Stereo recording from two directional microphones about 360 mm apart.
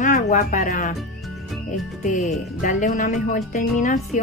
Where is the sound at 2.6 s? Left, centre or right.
Left.